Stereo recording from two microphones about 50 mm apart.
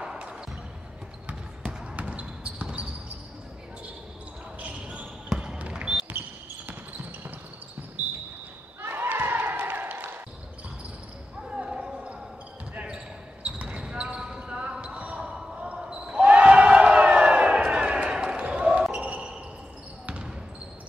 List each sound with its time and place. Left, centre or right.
0.0 s basketball bounce: centre
2.0 s basketball bounce: right
4.6 s basketball bounce: right
5.3 s basketball bounce: centre
6.7 s basketball bounce: right
8.8 s crowd: right
11.4 s basketball bounce: centre